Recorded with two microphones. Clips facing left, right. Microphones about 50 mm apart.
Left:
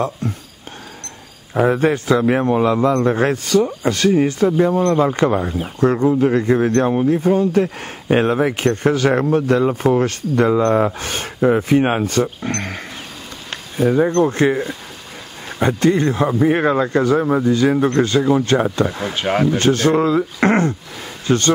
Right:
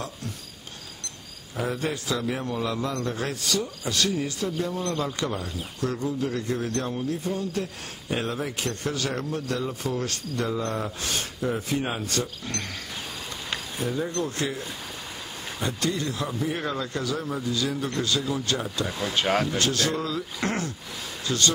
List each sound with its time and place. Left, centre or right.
0.2 s speech: left
1.5 s a man's voice: left
12.1 s a man's voice: left
13.8 s a man's voice: left
19.1 s speech: centre
19.5 s a man's voice: left